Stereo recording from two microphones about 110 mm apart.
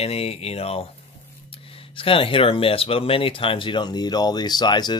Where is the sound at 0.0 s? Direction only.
65° left (ahead or behind).